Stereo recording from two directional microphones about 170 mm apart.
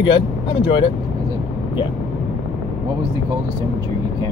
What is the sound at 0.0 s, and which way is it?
Speech, 30° left (ahead or behind).